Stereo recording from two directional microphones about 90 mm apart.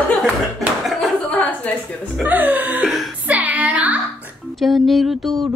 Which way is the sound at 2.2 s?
20° right (ahead or behind).